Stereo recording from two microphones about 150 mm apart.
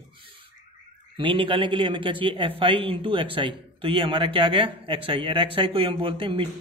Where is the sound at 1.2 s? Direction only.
35° right (ahead or behind).